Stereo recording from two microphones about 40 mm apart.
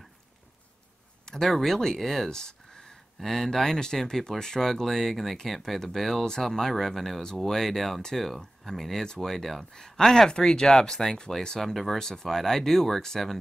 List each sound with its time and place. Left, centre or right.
1.2 s speech: centre
2.2 s a sound: centre
3.2 s speech: centre
9.7 s speech: centre
11.6 s speech: centre